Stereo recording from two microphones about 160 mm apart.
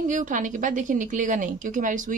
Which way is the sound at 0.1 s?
55° right (ahead or behind).